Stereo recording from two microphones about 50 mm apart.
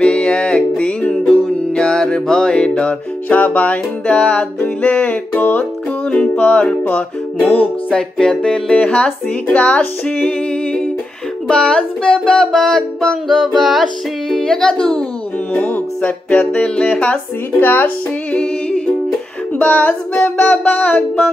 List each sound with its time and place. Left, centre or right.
0.0 s music: left
4.6 s child singing: left
6.0 s music: centre
7.9 s a sound: centre
8.7 s music: left
11.4 s a sound: centre
15.5 s child singing: left
16.0 s music: left
17.6 s child singing: left
18.3 s music: left
19.6 s child singing: left